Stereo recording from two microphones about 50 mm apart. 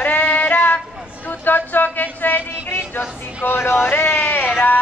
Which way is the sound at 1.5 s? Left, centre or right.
Left.